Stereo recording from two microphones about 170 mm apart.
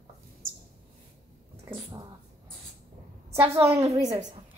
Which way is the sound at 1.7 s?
25° right (ahead or behind).